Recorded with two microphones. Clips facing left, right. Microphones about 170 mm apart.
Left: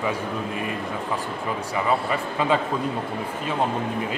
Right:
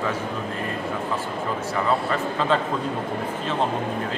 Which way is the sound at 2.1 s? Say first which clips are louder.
Even; 10° left (ahead or behind).